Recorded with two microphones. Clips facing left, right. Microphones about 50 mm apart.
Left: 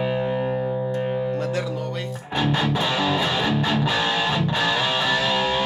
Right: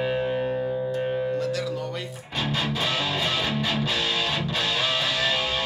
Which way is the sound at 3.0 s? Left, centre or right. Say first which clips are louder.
Left 4 dB; left.